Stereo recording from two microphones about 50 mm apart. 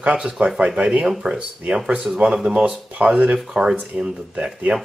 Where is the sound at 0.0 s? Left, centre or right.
Right.